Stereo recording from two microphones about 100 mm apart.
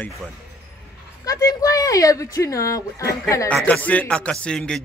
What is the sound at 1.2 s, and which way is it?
Speech, 30° left (ahead or behind).